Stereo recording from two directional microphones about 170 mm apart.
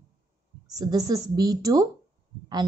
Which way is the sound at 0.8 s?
20° right (ahead or behind).